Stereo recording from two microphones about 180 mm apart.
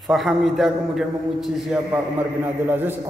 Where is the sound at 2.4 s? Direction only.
10° right (ahead or behind).